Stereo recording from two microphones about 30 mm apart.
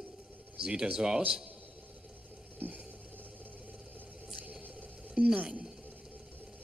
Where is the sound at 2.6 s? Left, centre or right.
Right.